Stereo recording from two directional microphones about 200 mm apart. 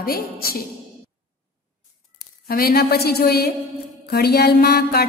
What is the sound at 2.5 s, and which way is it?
Music, 50° left (ahead or behind).